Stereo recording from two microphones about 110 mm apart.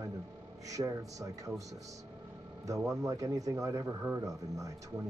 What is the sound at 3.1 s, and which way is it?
A man's voice, 30° right (ahead or behind).